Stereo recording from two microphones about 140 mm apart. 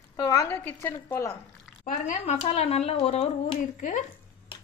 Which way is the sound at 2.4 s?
45° left (ahead or behind).